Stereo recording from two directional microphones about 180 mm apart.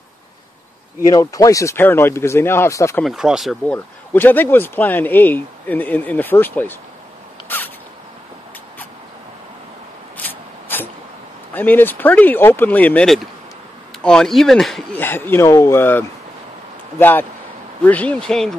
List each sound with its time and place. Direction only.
1.1 s speech: 20° left (ahead or behind)
3.0 s speech: centre (ahead or behind)
3.7 s speech: 10° left (ahead or behind)
7.4 s rodents: 10° left (ahead or behind)
11.5 s speech: 10° left (ahead or behind)